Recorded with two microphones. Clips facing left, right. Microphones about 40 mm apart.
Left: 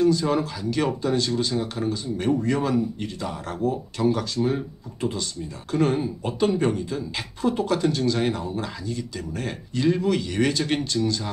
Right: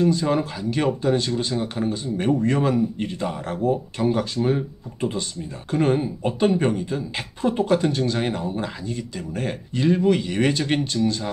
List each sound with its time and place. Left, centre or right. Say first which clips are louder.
0.0 s speech: even; right
4.4 s speech: right 2 dB; centre